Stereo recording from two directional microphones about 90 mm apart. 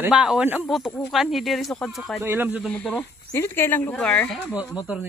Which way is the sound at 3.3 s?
25° left (ahead or behind).